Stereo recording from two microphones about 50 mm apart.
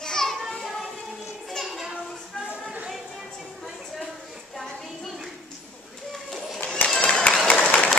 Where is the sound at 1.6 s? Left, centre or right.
Centre.